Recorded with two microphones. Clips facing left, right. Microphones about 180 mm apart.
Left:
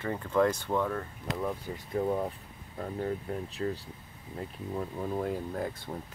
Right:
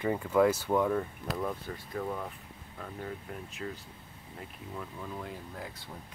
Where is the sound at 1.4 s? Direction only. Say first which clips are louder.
Left 2 dB; 10° left (ahead or behind).